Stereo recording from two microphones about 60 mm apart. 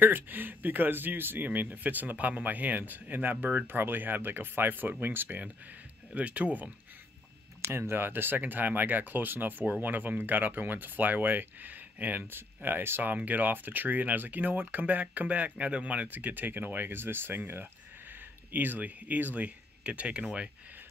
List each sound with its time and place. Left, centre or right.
0.0 s speech: right
7.6 s speech: right; by 20.2 s centre